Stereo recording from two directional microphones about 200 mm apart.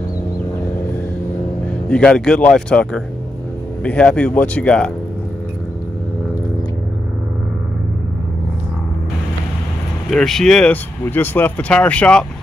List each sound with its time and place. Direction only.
1.9 s speech: 5° left (ahead or behind)
10.0 s speech: centre (ahead or behind)